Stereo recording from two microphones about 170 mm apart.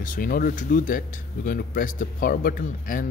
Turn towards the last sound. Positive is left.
turn(degrees=55)  # may be behind; listen again after turning